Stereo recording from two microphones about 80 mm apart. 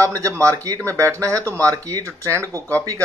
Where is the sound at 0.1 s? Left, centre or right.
Right.